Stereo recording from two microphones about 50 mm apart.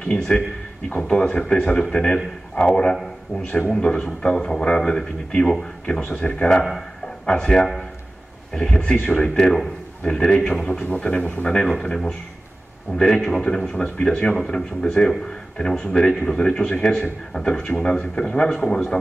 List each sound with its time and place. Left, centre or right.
0.0 s a man's voice: centre
5.9 s a man's voice: left
8.7 s a man's voice: centre